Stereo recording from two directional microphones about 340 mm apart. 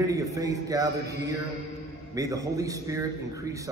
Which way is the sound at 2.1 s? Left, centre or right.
Centre.